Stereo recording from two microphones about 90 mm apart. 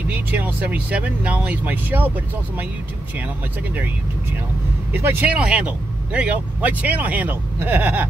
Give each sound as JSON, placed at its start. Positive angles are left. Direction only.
{"t": 0.1, "sound": "speech", "side_deg": -20}
{"t": 4.9, "sound": "speech", "side_deg": -20}